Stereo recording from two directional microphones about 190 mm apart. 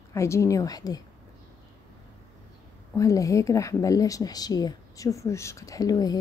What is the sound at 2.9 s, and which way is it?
A woman's voice, 15° left (ahead or behind).